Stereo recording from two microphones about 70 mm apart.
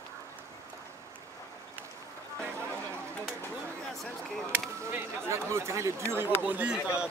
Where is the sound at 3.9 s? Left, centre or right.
Centre.